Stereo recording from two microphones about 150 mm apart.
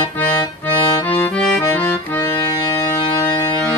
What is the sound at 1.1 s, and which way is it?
Accordion, 10° left (ahead or behind).